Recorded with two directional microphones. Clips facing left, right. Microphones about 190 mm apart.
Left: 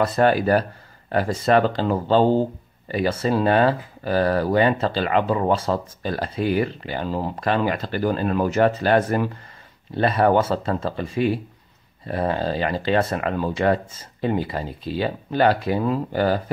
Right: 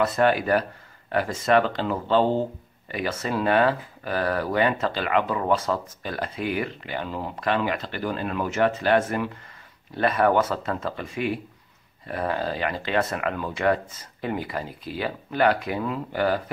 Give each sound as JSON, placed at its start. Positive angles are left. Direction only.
{"t": 0.0, "sound": "speech", "side_deg": 35}